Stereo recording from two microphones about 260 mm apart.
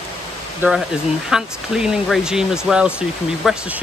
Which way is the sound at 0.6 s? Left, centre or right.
Centre.